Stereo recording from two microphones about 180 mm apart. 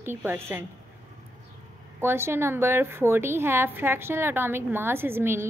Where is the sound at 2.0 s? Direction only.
15° right (ahead or behind).